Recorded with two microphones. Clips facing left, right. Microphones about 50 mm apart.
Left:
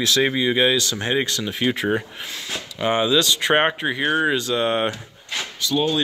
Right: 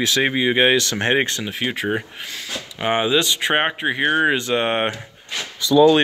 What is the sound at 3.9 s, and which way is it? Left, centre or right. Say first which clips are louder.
Speech: right 2 dB; right.